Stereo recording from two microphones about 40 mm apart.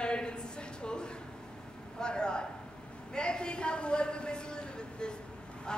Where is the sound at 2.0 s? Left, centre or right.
Left.